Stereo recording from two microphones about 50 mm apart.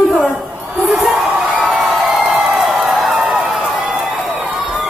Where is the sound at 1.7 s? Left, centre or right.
Centre.